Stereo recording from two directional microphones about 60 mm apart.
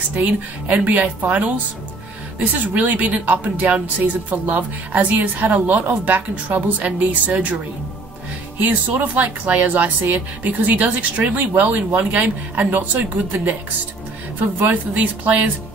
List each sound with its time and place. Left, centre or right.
0.1 s speech: right
8.5 s speech: right
14.7 s speech: right